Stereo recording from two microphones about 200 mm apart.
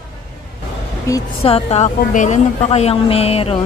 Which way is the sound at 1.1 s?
15° left (ahead or behind).